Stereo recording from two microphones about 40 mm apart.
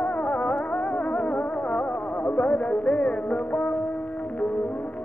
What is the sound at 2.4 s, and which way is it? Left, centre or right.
Music, left.